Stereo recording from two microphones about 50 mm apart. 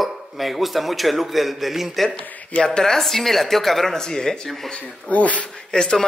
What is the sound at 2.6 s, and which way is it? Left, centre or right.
Speech, centre.